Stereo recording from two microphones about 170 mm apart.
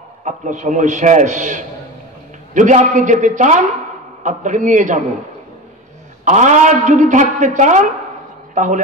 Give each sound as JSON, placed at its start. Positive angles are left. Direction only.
{"t": 0.2, "sound": "a woman's voice", "side_deg": -45}
{"t": 6.2, "sound": "a woman's voice", "side_deg": -45}